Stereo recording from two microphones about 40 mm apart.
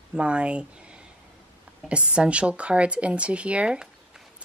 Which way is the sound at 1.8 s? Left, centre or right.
Right.